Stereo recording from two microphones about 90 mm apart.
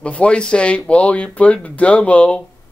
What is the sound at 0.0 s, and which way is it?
Speech, 10° left (ahead or behind).